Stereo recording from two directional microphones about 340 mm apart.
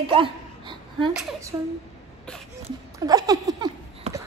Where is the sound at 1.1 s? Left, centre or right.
Centre.